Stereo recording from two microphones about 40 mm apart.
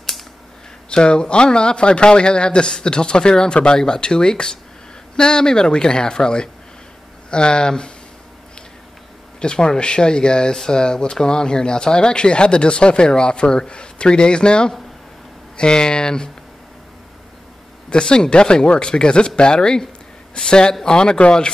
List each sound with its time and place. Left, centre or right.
0.8 s speech: left
9.4 s speech: left
17.8 s speech: left